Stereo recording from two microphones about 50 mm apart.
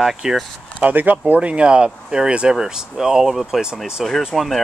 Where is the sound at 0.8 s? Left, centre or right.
Right.